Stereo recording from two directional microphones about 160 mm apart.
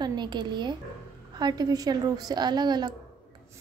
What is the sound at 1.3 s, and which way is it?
A woman's voice, 25° right (ahead or behind).